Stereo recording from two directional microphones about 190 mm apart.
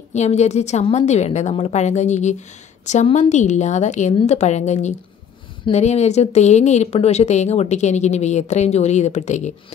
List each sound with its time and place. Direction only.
0.1 s speech: 35° left (ahead or behind)